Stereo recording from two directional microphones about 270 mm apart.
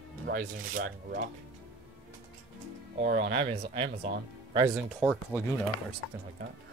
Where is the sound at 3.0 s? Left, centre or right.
Right.